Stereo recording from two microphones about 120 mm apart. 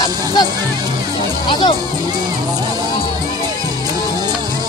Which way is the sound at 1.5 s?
40° left (ahead or behind).